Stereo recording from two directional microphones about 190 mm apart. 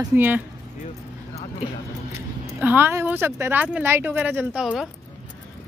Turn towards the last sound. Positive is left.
turn(degrees=-5)  # may be behind; listen again after turning